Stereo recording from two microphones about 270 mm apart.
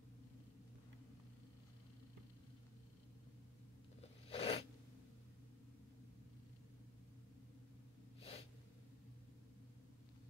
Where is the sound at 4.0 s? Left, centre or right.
Left.